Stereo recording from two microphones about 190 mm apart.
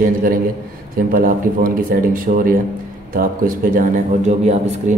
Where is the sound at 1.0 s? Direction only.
50° right (ahead or behind).